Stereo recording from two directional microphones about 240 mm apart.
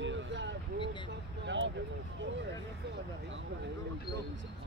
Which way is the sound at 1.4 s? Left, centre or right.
Right.